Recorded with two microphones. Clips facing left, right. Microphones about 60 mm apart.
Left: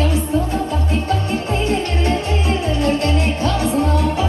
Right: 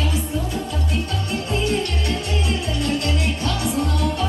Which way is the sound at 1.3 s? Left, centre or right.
Left.